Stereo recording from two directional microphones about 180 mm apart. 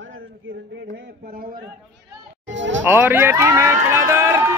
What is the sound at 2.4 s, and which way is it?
Speech, 90° right.